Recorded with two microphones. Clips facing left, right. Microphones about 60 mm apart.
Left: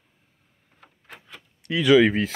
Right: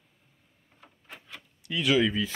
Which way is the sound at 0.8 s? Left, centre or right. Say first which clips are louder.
Left 2 dB; left.